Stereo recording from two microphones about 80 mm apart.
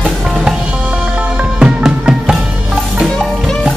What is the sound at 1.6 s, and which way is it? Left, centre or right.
Music, centre.